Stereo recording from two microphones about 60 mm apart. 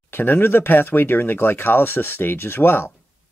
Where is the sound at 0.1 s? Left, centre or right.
Left.